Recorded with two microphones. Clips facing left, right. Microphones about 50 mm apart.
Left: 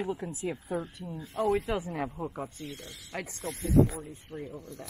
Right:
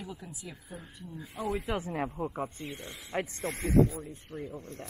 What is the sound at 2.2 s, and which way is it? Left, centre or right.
Speech, centre.